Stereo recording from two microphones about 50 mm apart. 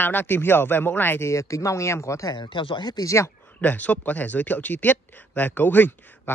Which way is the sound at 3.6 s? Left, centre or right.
Left.